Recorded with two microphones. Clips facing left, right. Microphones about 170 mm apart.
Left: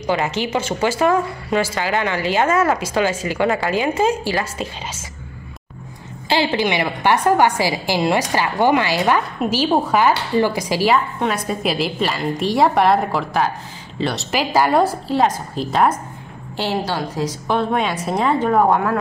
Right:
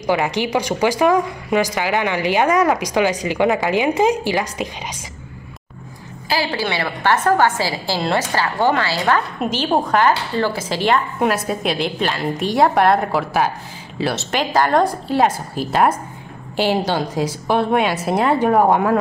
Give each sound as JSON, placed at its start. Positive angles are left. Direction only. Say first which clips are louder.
{"t": 0.0, "sound": "speech", "louder": "right 2 dB", "side_deg": -15}
{"t": 6.2, "sound": "a woman's voice", "louder": "left 3 dB", "side_deg": 25}
{"t": 9.4, "sound": "a woman's voice", "louder": "left 1 dB", "side_deg": 5}
{"t": 11.1, "sound": "a woman's voice", "louder": "right 2 dB", "side_deg": -5}
{"t": 16.8, "sound": "a woman's voice", "louder": "right 3 dB", "side_deg": -20}
{"t": 17.2, "sound": "speech", "louder": "even", "side_deg": -10}